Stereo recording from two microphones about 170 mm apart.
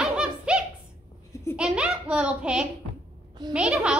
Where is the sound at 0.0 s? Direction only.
5° right (ahead or behind).